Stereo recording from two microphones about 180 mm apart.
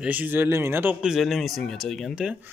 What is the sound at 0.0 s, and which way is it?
Speech, 10° right (ahead or behind).